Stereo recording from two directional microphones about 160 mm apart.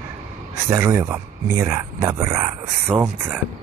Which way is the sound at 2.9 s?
5° right (ahead or behind).